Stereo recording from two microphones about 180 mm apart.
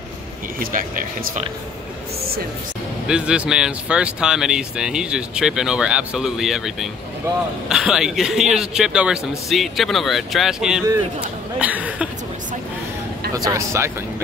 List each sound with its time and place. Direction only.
0.6 s speech: 50° right (ahead or behind)
3.1 s speech: 5° right (ahead or behind)
11.6 s a sound: 10° right (ahead or behind)
13.3 s speech: 20° right (ahead or behind)